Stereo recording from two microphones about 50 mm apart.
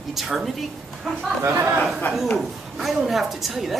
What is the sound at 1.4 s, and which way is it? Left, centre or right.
Speech, right.